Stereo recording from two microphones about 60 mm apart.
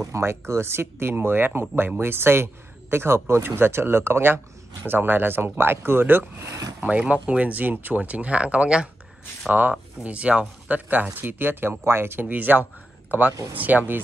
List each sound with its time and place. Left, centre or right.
0.0 s speech: right
6.8 s speech: right
9.5 s speech: right